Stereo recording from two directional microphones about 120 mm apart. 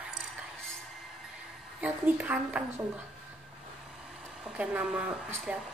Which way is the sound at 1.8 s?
15° right (ahead or behind).